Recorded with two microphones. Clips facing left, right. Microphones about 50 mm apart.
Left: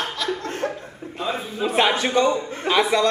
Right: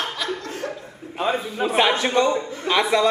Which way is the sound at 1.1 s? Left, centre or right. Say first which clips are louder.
Right 4 dB; centre.